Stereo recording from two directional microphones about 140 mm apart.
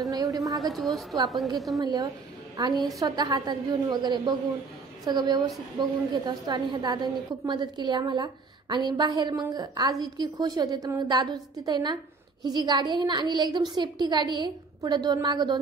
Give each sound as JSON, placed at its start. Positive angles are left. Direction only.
{"t": 0.1, "sound": "a woman's voice", "side_deg": -25}
{"t": 0.6, "sound": "a woman's voice", "side_deg": 0}
{"t": 1.8, "sound": "a woman's voice", "side_deg": -30}